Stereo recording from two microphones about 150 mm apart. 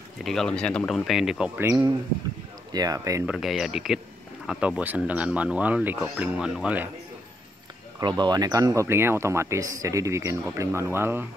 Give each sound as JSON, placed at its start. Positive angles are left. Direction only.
{"t": 0.2, "sound": "speech", "side_deg": 0}
{"t": 1.6, "sound": "speech", "side_deg": -20}
{"t": 3.3, "sound": "speech", "side_deg": 0}
{"t": 8.0, "sound": "speech", "side_deg": -30}